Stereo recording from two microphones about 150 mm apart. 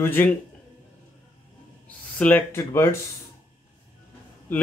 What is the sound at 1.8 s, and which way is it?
Speech, 10° left (ahead or behind).